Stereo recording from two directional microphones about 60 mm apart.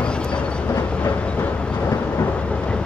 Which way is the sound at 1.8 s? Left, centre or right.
Left.